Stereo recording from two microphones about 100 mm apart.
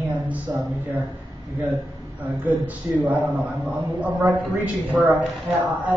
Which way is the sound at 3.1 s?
15° right (ahead or behind).